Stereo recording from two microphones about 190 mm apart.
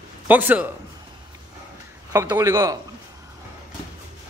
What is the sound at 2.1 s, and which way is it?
Speech, 15° right (ahead or behind).